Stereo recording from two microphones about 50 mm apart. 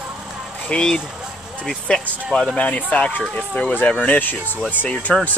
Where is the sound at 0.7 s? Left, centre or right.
Centre.